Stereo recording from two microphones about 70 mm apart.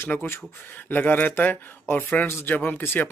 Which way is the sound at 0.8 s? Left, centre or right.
Left.